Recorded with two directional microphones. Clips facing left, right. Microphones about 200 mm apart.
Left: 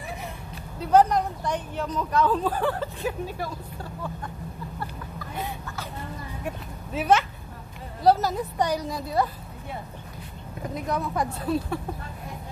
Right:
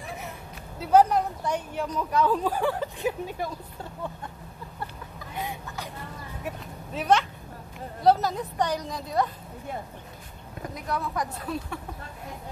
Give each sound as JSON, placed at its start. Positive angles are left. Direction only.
{"t": 0.7, "sound": "a woman's voice", "side_deg": -5}
{"t": 6.4, "sound": "a woman's voice", "side_deg": 5}
{"t": 10.7, "sound": "speech", "side_deg": 25}